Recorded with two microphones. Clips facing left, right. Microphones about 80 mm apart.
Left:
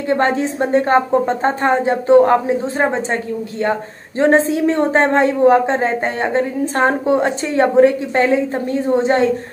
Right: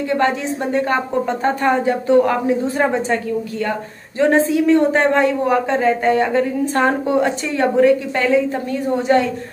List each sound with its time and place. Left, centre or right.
0.1 s a woman's voice: left